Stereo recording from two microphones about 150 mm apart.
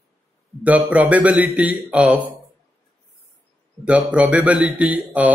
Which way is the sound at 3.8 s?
10° right (ahead or behind).